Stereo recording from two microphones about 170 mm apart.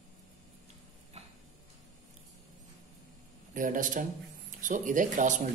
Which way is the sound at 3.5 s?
50° right (ahead or behind).